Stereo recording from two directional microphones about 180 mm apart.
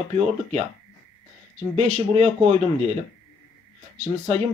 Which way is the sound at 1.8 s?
40° right (ahead or behind).